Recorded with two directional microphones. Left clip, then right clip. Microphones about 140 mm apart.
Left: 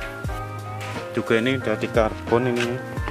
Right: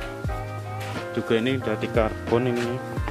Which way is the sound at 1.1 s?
25° left (ahead or behind).